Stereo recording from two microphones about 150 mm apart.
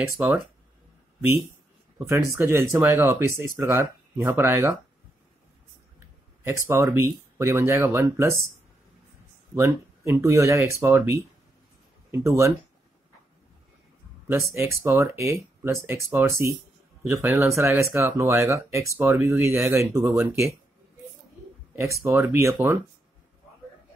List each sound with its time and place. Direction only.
2.0 s speech: 15° right (ahead or behind)
6.4 s speech: 20° right (ahead or behind)
9.6 s speech: 20° right (ahead or behind)
14.2 s speech: 20° right (ahead or behind)
21.7 s speech: 20° right (ahead or behind)